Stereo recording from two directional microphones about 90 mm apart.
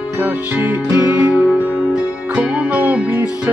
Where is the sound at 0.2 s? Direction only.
20° right (ahead or behind).